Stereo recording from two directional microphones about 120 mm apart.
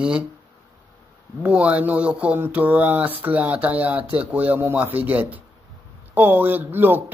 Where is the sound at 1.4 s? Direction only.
10° right (ahead or behind).